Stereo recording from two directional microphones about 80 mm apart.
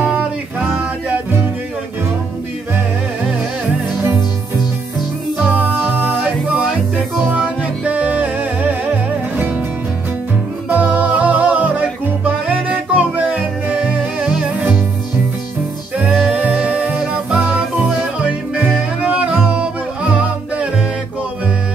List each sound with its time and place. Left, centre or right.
0.0 s music: centre
7.2 s music: centre
10.7 s music: right
16.3 s music: centre